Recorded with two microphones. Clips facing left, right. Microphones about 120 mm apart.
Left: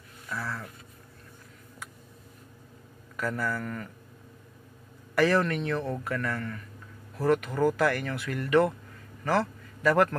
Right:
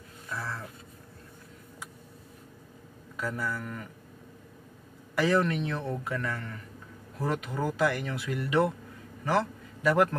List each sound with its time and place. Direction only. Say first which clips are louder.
0.3 s speech: left 1 dB; 25° right (ahead or behind)
3.2 s speech: left 3 dB; 20° right (ahead or behind)
5.1 s speech: left 1 dB; 15° right (ahead or behind)
9.2 s a sound: left 1 dB; 20° right (ahead or behind)